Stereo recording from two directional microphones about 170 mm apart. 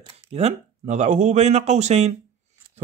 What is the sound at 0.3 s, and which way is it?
Speech, 40° right (ahead or behind).